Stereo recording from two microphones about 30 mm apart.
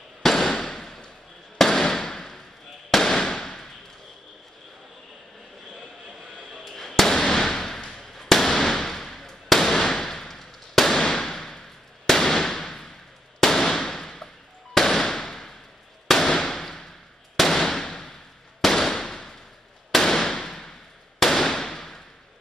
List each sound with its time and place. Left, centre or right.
0.2 s fireworks: centre
0.6 s a sound: centre
2.9 s fireworks: centre
6.7 s fireworks: centre
9.5 s firecracker: centre
11.0 s fireworks: centre
12.1 s firecracker: centre
13.4 s fireworks: centre
16.3 s firecracker: centre
20.3 s a sound: centre
21.2 s firecracker: centre